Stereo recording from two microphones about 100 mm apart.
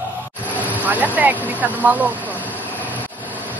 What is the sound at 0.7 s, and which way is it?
Speech, 15° right (ahead or behind).